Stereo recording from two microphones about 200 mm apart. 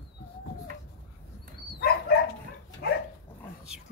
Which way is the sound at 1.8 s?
50° left (ahead or behind).